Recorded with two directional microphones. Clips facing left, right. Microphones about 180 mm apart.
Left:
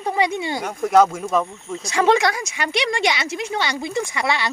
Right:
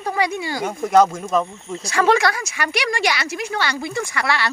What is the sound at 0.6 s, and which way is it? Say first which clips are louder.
Speech: right 1 dB; centre (ahead or behind).